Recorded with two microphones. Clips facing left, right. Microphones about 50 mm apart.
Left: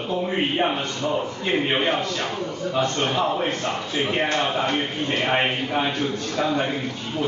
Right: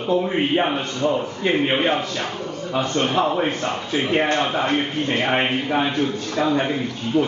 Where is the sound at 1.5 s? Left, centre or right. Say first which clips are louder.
Right 3 dB; centre.